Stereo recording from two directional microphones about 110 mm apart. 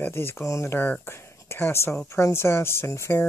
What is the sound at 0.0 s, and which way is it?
Speech, 20° left (ahead or behind).